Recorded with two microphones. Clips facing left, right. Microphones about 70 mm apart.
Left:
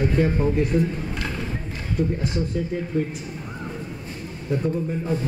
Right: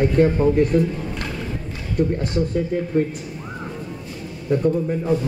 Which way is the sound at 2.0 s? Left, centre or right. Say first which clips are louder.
Right 4 dB; right.